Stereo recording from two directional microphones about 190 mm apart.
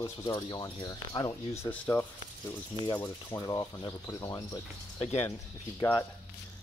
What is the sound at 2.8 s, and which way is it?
Speech, 20° left (ahead or behind).